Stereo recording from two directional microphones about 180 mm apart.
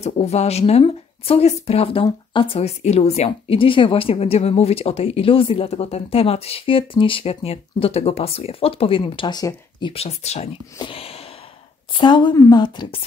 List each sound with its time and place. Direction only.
0.0 s speech: 35° left (ahead or behind)
10.8 s a sound: 30° left (ahead or behind)
11.9 s speech: 25° left (ahead or behind)